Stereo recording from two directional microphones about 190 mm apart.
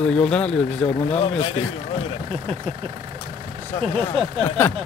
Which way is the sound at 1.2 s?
30° left (ahead or behind).